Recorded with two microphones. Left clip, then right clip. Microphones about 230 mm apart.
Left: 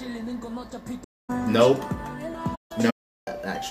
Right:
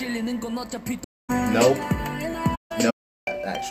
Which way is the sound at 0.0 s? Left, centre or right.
Right.